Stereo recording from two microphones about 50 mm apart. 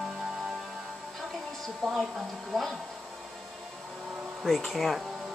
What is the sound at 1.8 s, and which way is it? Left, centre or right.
Speech, centre.